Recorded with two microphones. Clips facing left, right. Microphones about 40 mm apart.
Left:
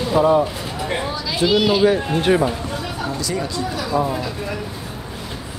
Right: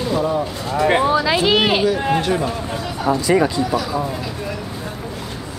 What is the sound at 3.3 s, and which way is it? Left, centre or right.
Speech, right.